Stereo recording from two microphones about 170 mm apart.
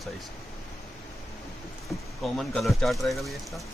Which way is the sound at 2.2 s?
Centre (ahead or behind).